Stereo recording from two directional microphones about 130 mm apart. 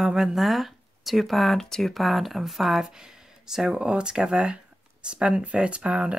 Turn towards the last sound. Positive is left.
turn(degrees=-10)  # may be behind; listen again after turning